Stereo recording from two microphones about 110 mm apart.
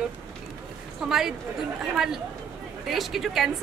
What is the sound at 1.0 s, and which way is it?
A woman's voice, 10° right (ahead or behind).